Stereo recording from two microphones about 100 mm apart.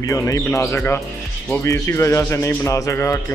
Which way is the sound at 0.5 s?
30° left (ahead or behind).